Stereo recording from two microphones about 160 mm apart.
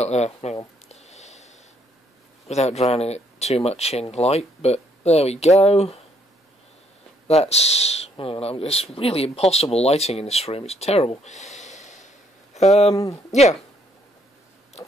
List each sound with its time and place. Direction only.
0.0 s speech: 45° left (ahead or behind)
0.8 s a sound: 45° left (ahead or behind)
2.4 s speech: 40° left (ahead or behind)
7.2 s speech: 40° left (ahead or behind)